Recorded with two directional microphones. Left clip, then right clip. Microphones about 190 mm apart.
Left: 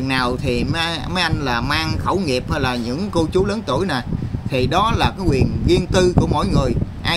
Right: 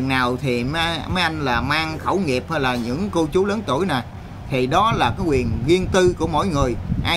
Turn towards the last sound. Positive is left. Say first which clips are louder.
# left 1 dB
turn(degrees=15)  # may be behind; listen again after turning